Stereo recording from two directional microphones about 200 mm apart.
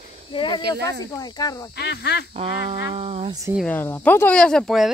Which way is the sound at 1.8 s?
55° left (ahead or behind).